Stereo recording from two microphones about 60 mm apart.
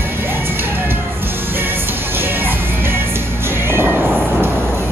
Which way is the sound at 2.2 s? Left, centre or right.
Right.